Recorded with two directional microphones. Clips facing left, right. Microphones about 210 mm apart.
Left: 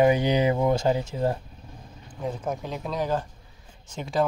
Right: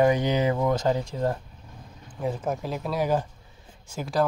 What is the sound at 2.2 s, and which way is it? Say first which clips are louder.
Speech: right 2 dB; 5° right (ahead or behind).